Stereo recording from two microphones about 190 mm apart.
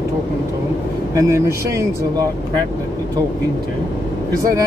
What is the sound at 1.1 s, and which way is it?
Speech, 15° right (ahead or behind).